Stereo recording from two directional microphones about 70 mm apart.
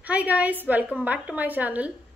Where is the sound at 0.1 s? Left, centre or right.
Centre.